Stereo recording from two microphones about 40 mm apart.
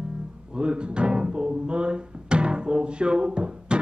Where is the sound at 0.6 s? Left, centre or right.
Right.